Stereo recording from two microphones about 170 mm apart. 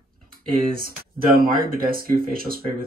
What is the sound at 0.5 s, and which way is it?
Speech, 55° right (ahead or behind).